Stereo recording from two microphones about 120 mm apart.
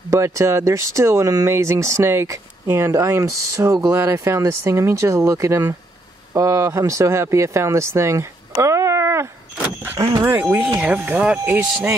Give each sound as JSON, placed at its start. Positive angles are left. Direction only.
{"t": 0.1, "sound": "speech", "side_deg": -25}
{"t": 10.2, "sound": "speech", "side_deg": -15}